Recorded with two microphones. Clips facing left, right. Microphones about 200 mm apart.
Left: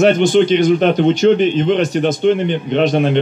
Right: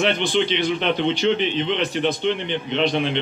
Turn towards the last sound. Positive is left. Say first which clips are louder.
# left 7 dB
turn(degrees=45)  # may be behind; listen again after turning